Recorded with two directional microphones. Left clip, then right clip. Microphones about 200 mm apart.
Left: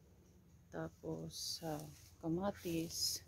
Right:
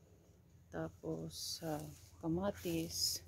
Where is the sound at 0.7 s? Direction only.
Centre (ahead or behind).